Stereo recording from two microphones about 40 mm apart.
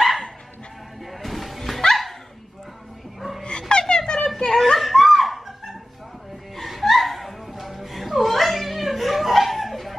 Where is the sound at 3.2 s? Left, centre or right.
Centre.